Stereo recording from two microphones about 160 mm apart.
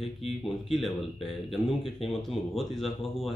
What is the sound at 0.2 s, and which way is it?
Speech, 40° left (ahead or behind).